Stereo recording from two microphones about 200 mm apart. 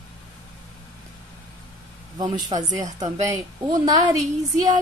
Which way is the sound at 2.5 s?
25° right (ahead or behind).